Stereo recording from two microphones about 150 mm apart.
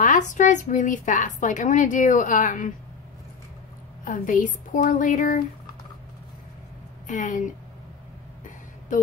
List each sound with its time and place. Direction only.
0.0 s speech: 55° left (ahead or behind)
4.0 s speech: 60° left (ahead or behind)
7.1 s speech: 60° left (ahead or behind)